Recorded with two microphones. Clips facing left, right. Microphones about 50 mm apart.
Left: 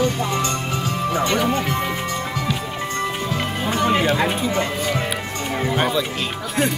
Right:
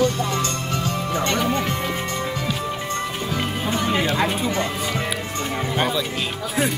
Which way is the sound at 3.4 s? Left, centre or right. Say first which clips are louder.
Left 2 dB; centre.